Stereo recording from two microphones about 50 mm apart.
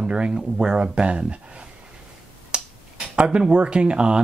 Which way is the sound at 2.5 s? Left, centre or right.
Right.